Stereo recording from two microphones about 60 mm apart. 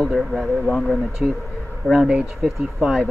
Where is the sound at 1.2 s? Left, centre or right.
Centre.